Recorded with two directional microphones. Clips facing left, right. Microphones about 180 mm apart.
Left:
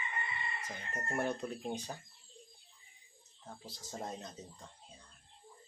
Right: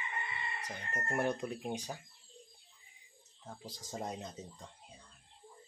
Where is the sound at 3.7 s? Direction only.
15° right (ahead or behind).